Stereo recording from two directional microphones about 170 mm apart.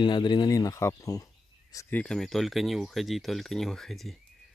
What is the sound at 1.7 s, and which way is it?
Speech, 5° left (ahead or behind).